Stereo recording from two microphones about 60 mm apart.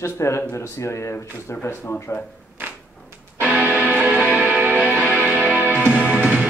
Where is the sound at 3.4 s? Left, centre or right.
Right.